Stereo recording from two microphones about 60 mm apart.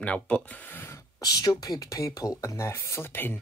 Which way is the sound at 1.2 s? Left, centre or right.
Left.